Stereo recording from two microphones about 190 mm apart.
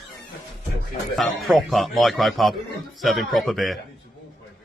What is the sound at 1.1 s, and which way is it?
Speech, centre (ahead or behind).